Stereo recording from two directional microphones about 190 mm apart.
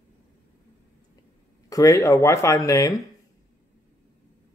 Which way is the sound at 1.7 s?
15° left (ahead or behind).